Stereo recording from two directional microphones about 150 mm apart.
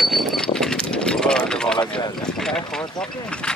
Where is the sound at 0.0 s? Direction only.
Centre (ahead or behind).